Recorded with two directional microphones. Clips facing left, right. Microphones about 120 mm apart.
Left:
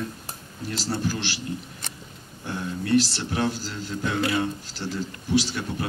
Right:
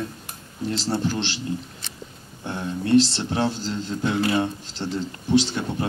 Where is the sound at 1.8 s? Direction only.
45° left (ahead or behind).